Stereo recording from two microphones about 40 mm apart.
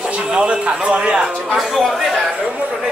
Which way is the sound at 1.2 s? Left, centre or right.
Centre.